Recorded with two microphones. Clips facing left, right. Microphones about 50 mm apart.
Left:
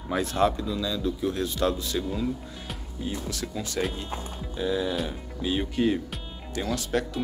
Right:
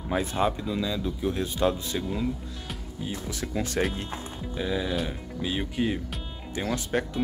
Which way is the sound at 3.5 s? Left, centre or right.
Right.